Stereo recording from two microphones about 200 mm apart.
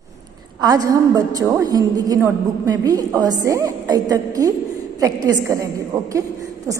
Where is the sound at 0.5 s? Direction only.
20° right (ahead or behind).